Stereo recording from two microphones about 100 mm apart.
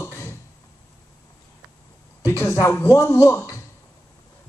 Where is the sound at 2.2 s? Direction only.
30° left (ahead or behind).